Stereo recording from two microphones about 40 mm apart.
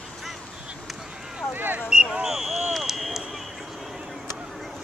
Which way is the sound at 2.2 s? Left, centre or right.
Centre.